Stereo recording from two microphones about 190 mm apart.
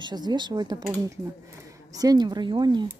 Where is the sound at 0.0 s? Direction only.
20° right (ahead or behind).